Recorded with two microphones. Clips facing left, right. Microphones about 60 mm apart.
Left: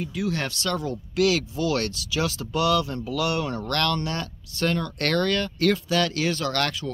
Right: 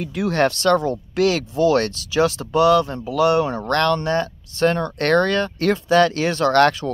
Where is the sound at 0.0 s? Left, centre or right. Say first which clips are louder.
Right 8 dB; right.